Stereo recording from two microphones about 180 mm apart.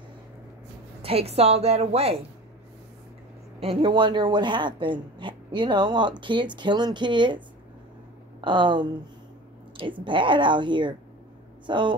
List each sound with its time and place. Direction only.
1.0 s a woman's voice: 35° right (ahead or behind)
3.5 s speech: 30° right (ahead or behind)
10.0 s speech: 25° right (ahead or behind)